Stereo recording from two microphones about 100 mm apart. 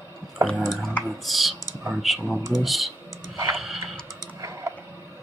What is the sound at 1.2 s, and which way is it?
Speech, centre (ahead or behind).